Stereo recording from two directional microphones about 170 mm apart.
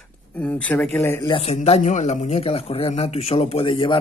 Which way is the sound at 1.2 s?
35° left (ahead or behind).